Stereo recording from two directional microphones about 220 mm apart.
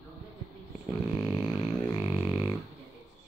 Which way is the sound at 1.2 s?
5° right (ahead or behind).